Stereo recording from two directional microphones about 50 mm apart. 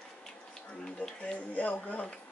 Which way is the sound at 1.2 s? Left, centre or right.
Left.